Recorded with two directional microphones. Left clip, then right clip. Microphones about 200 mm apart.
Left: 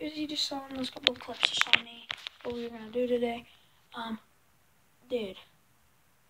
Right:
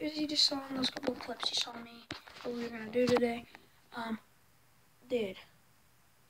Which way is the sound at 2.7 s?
15° right (ahead or behind).